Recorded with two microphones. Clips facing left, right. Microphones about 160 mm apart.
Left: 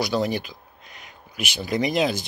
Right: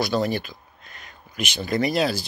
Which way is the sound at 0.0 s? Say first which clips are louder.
Right 1 dB; 15° left (ahead or behind).